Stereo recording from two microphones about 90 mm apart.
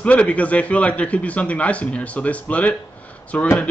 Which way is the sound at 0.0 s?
15° left (ahead or behind).